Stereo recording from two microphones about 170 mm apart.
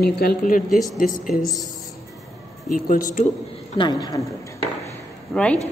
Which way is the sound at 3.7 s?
25° left (ahead or behind).